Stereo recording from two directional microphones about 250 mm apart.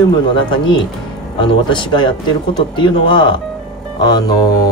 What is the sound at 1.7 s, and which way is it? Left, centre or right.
Speech, centre.